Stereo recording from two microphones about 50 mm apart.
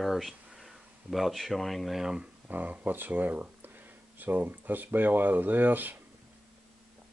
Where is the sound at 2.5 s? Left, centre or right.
Right.